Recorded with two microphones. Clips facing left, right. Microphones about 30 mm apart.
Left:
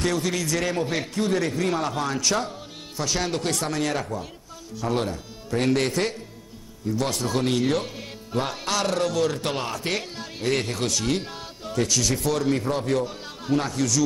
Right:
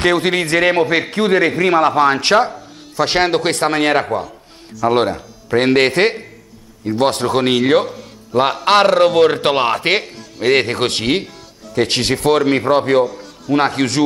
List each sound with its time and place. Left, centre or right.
0.0 s speech: right